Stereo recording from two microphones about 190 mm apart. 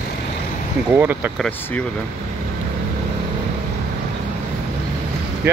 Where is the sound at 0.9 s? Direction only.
10° right (ahead or behind).